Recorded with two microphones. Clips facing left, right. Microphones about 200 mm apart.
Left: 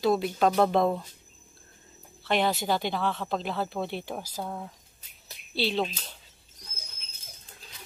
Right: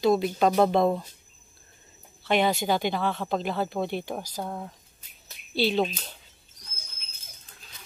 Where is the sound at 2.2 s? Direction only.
Centre (ahead or behind).